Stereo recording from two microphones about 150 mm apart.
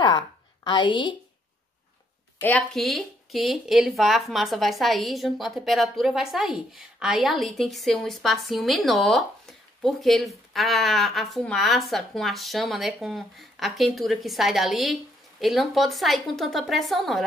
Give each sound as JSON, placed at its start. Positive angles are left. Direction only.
{"t": 0.7, "sound": "a woman's voice", "side_deg": 30}
{"t": 2.4, "sound": "speech", "side_deg": 5}